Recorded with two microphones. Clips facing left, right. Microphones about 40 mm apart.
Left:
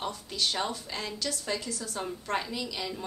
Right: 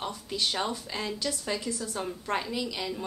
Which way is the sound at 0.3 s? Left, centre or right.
Centre.